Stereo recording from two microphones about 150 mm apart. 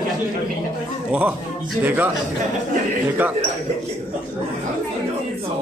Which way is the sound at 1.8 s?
10° right (ahead or behind).